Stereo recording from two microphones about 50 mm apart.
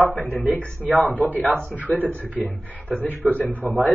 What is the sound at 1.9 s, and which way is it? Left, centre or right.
Speech, left.